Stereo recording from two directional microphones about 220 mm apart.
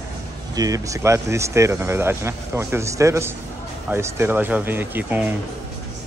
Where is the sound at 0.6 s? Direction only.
15° right (ahead or behind).